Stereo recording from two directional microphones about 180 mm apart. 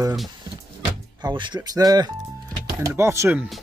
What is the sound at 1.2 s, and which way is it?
Speech, 25° right (ahead or behind).